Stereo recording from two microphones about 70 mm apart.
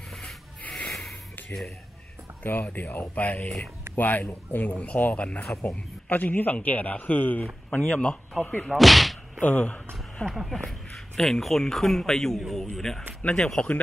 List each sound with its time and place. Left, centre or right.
0.2 s rub: centre
2.6 s speech: left
8.7 s speech: centre
9.4 s speech: left
10.2 s speech: centre